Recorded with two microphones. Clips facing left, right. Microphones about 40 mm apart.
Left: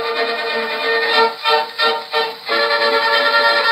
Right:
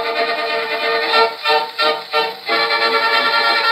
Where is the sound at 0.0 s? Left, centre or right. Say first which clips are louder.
Right 1 dB; centre.